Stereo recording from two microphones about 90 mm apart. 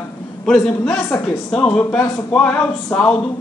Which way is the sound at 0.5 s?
5° left (ahead or behind).